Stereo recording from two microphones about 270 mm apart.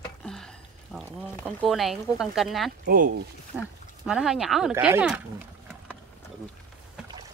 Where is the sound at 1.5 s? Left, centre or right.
Centre.